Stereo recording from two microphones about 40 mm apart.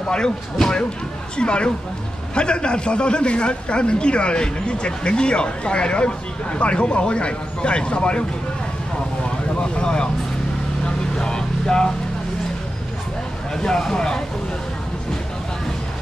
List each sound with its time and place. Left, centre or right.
0.1 s a man's voice: centre
9.6 s speech: left
11.1 s vehicle: centre
13.6 s speech: centre